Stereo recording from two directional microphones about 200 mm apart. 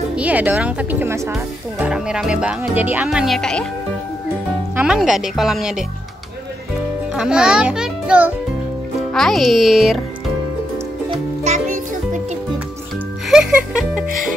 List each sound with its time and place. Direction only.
0.1 s speech: 5° right (ahead or behind)
1.9 s speech: 5° right (ahead or behind)
4.7 s speech: 5° right (ahead or behind)
7.2 s a child's voice: 5° right (ahead or behind)
11.1 s music: 35° right (ahead or behind)
13.3 s speech: 5° right (ahead or behind)
14.0 s speech: 45° right (ahead or behind)